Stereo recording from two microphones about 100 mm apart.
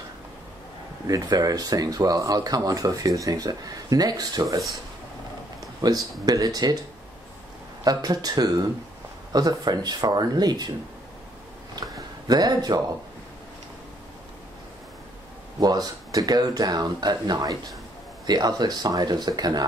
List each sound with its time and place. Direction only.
1.0 s speech: 35° right (ahead or behind)
5.6 s speech: 40° right (ahead or behind)
7.8 s speech: 40° right (ahead or behind)
11.8 s a sound: 40° right (ahead or behind)
12.3 s speech: 40° right (ahead or behind)
15.6 s speech: 40° right (ahead or behind)